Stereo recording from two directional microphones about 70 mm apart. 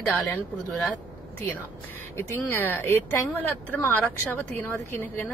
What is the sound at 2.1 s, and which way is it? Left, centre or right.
Speech, left.